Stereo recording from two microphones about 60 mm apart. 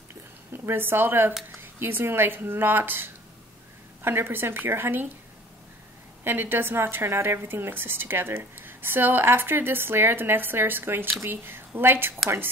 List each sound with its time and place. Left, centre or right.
0.1 s a sound: right
1.6 s a woman's voice: right
6.2 s a woman's voice: right